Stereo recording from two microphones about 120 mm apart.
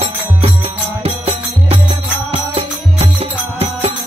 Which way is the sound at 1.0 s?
50° right (ahead or behind).